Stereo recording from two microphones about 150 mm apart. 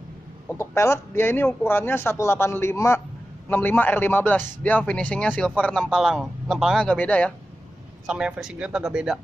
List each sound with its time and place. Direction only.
0.6 s a man's voice: 20° left (ahead or behind)
8.1 s a man's voice: 5° right (ahead or behind)